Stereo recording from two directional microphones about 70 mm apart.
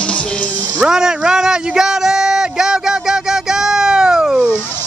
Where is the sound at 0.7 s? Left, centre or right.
Centre.